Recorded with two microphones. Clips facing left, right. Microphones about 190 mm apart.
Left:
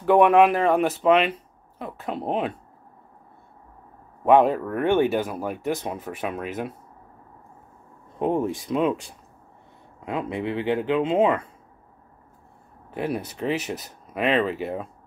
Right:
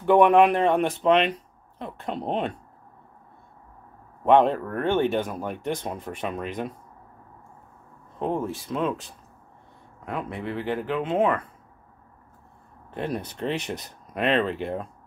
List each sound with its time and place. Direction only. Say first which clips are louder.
0.0 s speech: left 1 dB; centre (ahead or behind)
4.2 s speech: left 1 dB; 5° left (ahead or behind)
8.2 s speech: left 4 dB; 15° left (ahead or behind)
12.9 s speech: left 2 dB; 10° left (ahead or behind)